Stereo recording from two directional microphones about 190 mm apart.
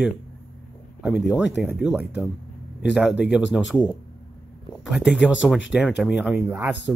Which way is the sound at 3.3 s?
5° right (ahead or behind).